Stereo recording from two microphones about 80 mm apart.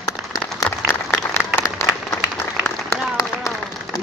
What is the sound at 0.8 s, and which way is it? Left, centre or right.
Applause, left.